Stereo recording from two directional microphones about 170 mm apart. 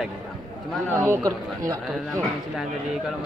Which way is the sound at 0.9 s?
15° right (ahead or behind).